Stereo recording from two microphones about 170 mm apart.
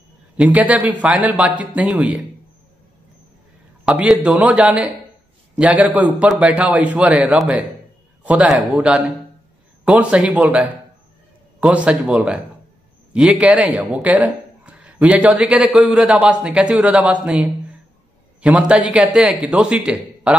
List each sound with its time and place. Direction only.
0.4 s speech: 10° right (ahead or behind)
3.8 s speech: 5° right (ahead or behind)